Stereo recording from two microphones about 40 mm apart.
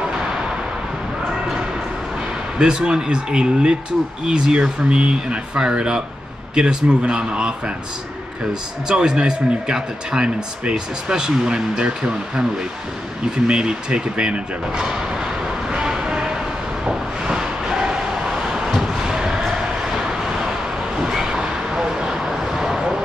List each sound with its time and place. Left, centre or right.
2.6 s speech: centre
8.8 s speech: centre
13.5 s speech: right
17.2 s vehicle: centre
18.8 s a sound: centre
21.0 s vehicle: centre